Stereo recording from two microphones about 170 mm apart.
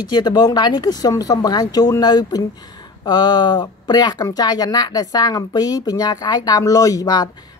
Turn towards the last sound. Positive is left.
turn(degrees=20)  # may be behind; listen again after turning